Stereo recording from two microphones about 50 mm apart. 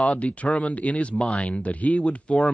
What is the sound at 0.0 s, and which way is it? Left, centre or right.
Speech, left.